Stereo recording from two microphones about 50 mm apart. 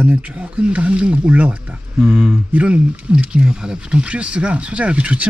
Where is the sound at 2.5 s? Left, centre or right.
Right.